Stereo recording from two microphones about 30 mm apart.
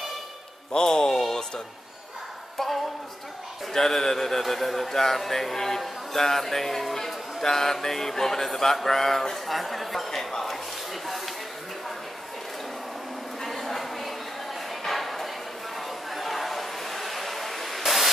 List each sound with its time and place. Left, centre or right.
0.7 s speech: centre
3.7 s speech: centre
13.4 s a sound: centre